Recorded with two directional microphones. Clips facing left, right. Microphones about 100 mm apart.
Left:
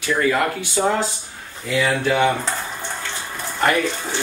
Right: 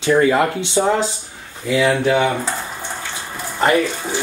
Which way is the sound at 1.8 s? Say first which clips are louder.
Right 3 dB; 5° right (ahead or behind).